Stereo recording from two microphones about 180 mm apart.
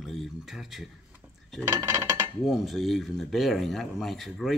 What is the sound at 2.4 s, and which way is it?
Speech, centre (ahead or behind).